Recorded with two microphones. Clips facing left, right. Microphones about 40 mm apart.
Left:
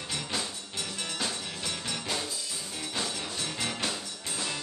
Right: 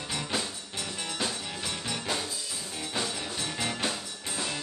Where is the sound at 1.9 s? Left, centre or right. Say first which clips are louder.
Right 2 dB; centre.